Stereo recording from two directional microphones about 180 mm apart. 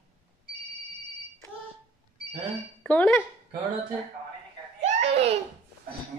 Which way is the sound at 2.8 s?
5° left (ahead or behind).